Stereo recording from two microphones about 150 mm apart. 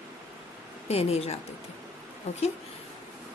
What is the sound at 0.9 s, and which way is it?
Speech, 45° left (ahead or behind).